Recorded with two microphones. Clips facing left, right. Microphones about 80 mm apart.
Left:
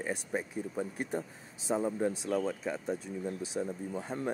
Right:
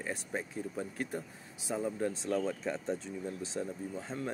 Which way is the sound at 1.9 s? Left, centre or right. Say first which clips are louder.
Left 2 dB; centre.